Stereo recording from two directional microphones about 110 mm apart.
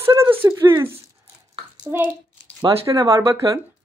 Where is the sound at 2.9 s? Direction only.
30° right (ahead or behind).